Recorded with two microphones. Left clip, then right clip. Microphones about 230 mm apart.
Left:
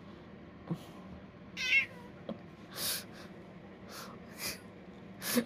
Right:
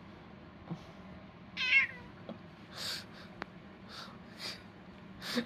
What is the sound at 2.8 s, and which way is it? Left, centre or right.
Snort, left.